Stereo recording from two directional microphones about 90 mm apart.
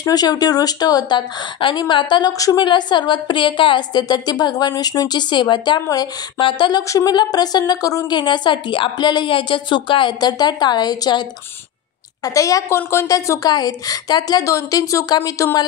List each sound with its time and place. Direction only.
0.0 s speech: 45° left (ahead or behind)
5.9 s speech: 45° left (ahead or behind)
6.4 s speech: 60° left (ahead or behind)
7.1 s speech: 50° left (ahead or behind)
8.2 s speech: 60° left (ahead or behind)
12.2 s speech: 40° left (ahead or behind)
14.4 s speech: 40° left (ahead or behind)